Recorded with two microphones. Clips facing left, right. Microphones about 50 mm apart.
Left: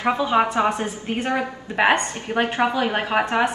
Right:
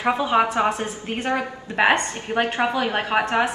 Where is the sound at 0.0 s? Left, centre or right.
Centre.